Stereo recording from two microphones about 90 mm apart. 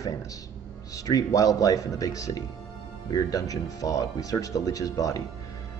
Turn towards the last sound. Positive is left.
turn(degrees=40)  # may be behind; listen again after turning